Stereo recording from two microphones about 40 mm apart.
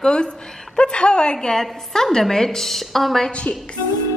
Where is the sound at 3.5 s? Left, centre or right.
Left.